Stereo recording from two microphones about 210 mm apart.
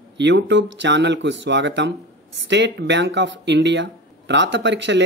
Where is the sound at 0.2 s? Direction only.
60° right (ahead or behind).